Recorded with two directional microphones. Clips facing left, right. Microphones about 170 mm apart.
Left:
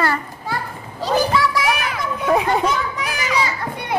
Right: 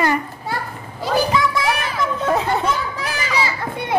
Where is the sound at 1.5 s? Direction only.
30° right (ahead or behind).